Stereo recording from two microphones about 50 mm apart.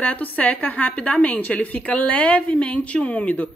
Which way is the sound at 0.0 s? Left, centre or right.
Left.